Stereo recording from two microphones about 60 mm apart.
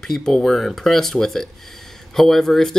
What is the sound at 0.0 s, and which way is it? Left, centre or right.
Speech, centre.